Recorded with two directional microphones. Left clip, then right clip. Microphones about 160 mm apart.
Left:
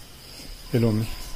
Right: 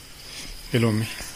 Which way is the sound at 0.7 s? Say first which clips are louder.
Right 1 dB; centre (ahead or behind).